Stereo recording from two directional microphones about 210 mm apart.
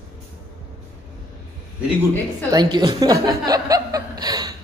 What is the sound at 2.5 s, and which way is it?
Speech, 20° right (ahead or behind).